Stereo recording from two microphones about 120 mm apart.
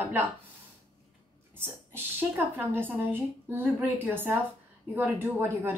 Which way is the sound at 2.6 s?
20° right (ahead or behind).